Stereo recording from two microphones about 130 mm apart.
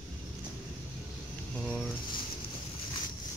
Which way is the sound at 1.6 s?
5° left (ahead or behind).